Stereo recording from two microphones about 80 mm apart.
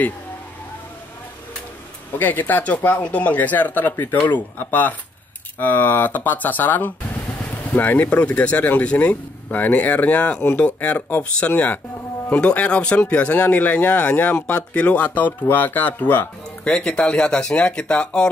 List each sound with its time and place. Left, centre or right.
2.1 s speech: left